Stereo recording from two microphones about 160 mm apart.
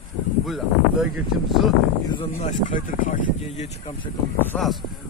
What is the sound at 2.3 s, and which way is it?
Speech, 50° left (ahead or behind).